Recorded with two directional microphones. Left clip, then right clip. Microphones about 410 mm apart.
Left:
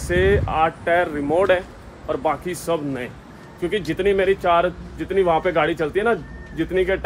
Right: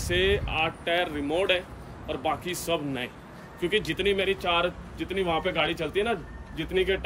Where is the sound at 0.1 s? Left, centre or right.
Left.